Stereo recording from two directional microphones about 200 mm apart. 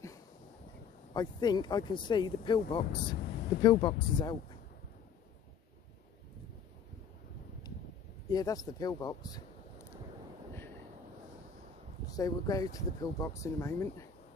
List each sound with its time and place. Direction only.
1.1 s speech: 20° left (ahead or behind)
8.3 s speech: 20° left (ahead or behind)
12.2 s speech: 15° left (ahead or behind)